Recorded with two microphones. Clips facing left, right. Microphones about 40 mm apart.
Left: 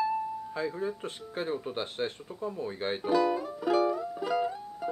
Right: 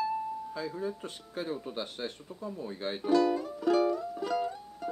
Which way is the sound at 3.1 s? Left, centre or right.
Centre.